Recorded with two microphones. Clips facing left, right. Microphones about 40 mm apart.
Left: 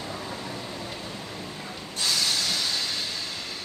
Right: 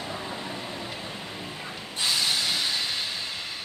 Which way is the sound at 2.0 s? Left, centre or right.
Centre.